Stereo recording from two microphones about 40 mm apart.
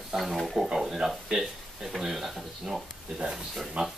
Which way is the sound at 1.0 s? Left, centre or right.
Centre.